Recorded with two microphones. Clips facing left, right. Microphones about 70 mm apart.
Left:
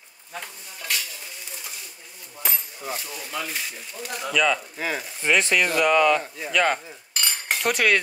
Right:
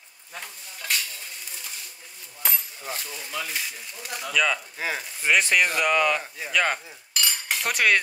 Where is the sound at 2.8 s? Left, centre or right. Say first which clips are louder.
Left 3 dB; centre.